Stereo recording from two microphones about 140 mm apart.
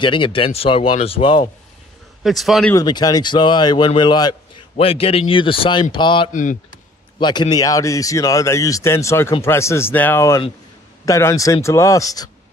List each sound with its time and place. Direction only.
0.0 s speech: 35° left (ahead or behind)
2.2 s a man's voice: centre (ahead or behind)
2.7 s speech: 30° left (ahead or behind)
6.3 s speech: 65° left (ahead or behind)
7.2 s speech: 30° left (ahead or behind)